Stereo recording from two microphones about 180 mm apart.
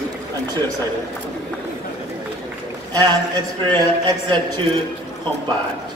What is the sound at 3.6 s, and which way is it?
Speech, 25° right (ahead or behind).